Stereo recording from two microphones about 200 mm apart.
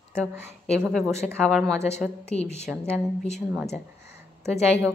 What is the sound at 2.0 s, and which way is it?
A woman's voice, 5° right (ahead or behind).